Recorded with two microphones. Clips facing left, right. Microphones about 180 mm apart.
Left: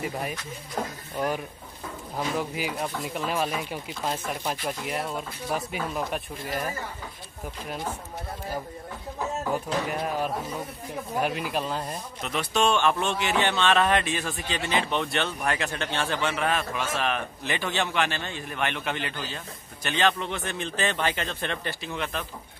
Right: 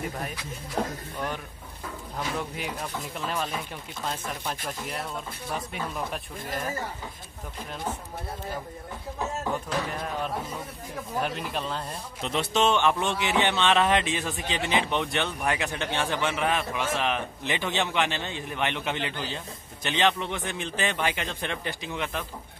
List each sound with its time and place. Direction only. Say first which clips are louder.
2.1 s speech: left 4 dB; 5° left (ahead or behind)
9.4 s speech: left 3 dB; 10° left (ahead or behind)
12.2 s speech: right 1 dB; 25° right (ahead or behind)